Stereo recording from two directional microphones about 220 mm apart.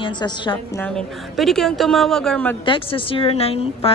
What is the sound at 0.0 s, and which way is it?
Speech, 20° left (ahead or behind).